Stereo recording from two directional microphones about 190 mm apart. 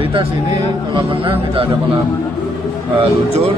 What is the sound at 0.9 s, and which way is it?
Speech, 25° right (ahead or behind).